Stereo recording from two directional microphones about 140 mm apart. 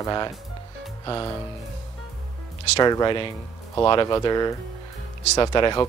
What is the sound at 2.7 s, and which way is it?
Speech, 30° left (ahead or behind).